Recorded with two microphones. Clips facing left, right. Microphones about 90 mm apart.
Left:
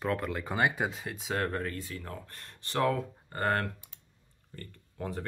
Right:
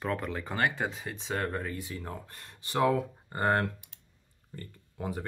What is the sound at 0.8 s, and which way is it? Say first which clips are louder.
Speech: even; centre (ahead or behind).